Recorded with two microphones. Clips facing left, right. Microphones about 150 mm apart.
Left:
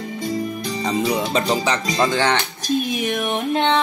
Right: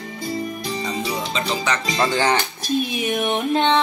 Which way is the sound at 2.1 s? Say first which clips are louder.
Right 2 dB; 5° right (ahead or behind).